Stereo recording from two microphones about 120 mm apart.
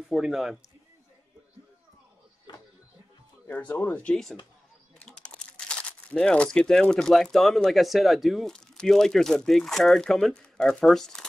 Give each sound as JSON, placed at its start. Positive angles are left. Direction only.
{"t": 0.1, "sound": "speech", "side_deg": -5}
{"t": 2.5, "sound": "a sound", "side_deg": 40}
{"t": 3.4, "sound": "speech", "side_deg": 15}